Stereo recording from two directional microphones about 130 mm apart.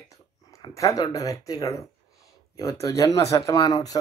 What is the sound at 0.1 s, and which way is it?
Speech, 25° left (ahead or behind).